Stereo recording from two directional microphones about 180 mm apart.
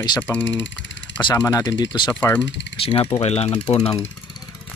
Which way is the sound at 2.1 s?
10° left (ahead or behind).